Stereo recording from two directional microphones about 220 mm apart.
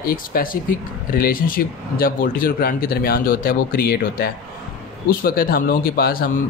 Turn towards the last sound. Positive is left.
turn(degrees=45)  # may be behind; listen again after turning